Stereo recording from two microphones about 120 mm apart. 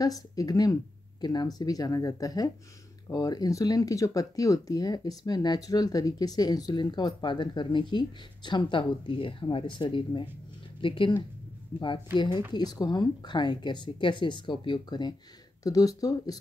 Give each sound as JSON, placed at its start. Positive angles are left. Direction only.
{"t": 0.0, "sound": "speech", "side_deg": 30}
{"t": 11.7, "sound": "speech", "side_deg": 35}